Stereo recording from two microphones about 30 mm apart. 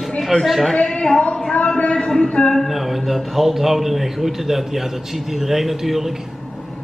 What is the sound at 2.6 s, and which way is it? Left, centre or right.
A man's voice, centre.